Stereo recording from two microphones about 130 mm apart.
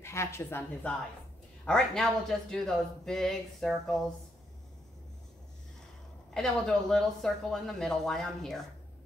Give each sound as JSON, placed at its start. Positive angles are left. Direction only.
{"t": 0.0, "sound": "speech", "side_deg": 20}
{"t": 1.6, "sound": "speech", "side_deg": 5}
{"t": 6.3, "sound": "speech", "side_deg": 5}